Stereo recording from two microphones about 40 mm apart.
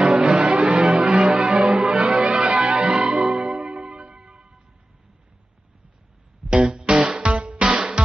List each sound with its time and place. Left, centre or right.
0.0 s music: centre
6.5 s music: right